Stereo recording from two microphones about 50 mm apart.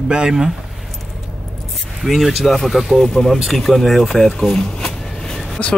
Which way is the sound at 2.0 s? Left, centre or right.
Centre.